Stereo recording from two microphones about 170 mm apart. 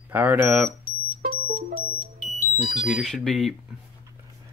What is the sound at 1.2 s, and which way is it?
Music, 60° right (ahead or behind).